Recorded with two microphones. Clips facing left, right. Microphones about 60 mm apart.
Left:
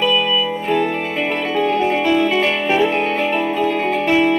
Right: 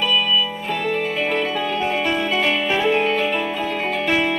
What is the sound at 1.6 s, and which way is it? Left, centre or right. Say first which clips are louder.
Music: left 5 dB; left.